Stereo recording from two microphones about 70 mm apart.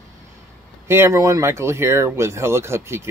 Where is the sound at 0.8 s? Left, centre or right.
Right.